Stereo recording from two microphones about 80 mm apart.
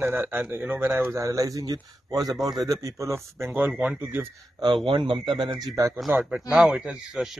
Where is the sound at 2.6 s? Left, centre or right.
Right.